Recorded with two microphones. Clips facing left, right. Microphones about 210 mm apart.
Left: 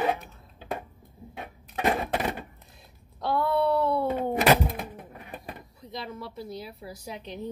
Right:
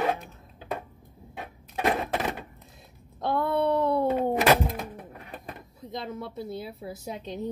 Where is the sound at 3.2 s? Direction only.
20° right (ahead or behind).